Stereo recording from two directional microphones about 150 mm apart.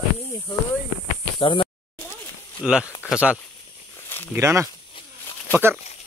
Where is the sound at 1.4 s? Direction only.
35° left (ahead or behind).